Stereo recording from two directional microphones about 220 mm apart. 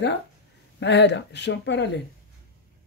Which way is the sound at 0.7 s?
50° left (ahead or behind).